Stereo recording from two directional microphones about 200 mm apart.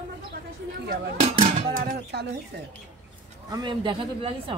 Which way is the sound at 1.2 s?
30° right (ahead or behind).